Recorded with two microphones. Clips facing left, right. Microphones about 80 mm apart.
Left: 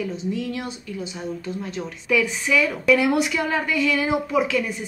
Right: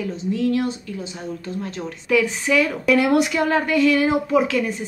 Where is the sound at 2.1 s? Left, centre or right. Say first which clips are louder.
Right 2 dB; right.